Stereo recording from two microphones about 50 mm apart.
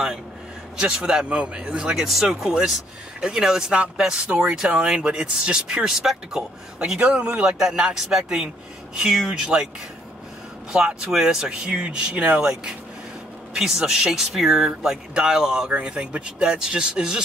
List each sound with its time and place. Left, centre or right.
0.9 s speech: centre
7.0 s speech: right
7.4 s speech: centre
10.7 s speech: centre
12.4 s speech: centre
15.7 s speech: right